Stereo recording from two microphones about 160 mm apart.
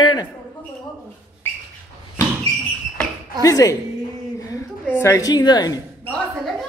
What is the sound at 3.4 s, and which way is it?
Speech, 20° left (ahead or behind).